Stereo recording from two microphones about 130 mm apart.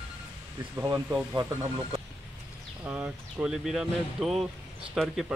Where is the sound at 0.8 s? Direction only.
25° right (ahead or behind).